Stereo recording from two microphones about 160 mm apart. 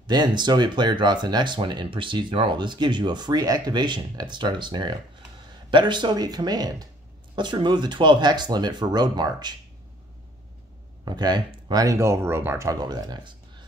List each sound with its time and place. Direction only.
0.0 s speech: 30° right (ahead or behind)
11.1 s speech: 25° right (ahead or behind)